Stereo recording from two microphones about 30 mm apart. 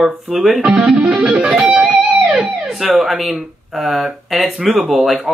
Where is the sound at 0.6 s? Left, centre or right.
Right.